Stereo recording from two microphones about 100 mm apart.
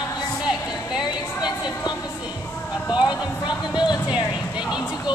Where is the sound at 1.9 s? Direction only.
45° left (ahead or behind).